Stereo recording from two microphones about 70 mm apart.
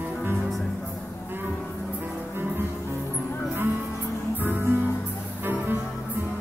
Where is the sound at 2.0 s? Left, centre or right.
Right.